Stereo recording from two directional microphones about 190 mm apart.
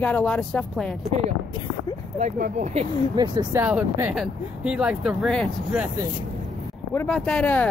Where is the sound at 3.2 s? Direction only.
20° right (ahead or behind).